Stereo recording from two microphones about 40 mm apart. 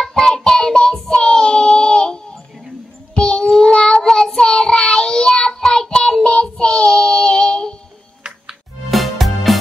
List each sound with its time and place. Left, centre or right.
0.0 s child singing: centre
8.9 s music: centre